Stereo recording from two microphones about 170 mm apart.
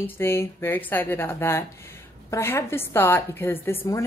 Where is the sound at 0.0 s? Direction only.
15° left (ahead or behind).